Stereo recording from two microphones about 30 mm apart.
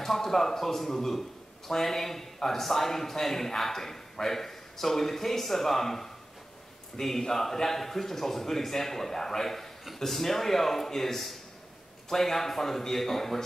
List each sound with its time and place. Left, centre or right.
0.0 s speech: centre